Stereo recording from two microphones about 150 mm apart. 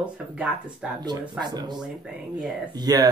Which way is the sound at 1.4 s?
30° right (ahead or behind).